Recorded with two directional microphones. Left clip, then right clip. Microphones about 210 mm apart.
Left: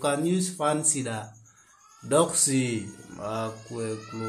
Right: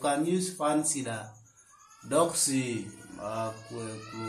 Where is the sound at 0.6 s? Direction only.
45° left (ahead or behind).